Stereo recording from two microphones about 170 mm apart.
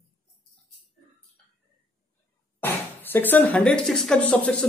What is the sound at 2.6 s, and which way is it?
Speech, 10° left (ahead or behind).